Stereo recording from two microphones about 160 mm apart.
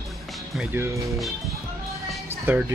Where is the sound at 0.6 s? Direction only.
15° right (ahead or behind).